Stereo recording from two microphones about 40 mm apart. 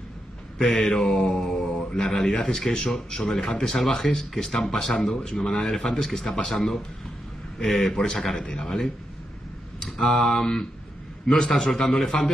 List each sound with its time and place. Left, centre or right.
0.7 s mantra: centre
2.0 s a man's voice: centre